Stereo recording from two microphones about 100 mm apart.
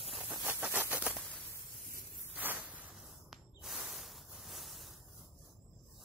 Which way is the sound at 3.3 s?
5° right (ahead or behind).